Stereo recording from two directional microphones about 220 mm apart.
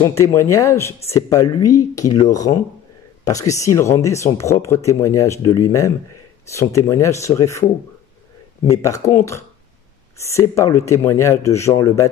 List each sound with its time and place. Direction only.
0.0 s speech: 15° left (ahead or behind)
8.6 s speech: 15° left (ahead or behind)